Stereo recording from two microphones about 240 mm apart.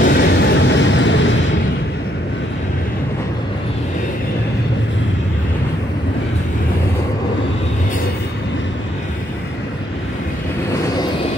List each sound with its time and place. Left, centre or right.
0.0 s vehicle: left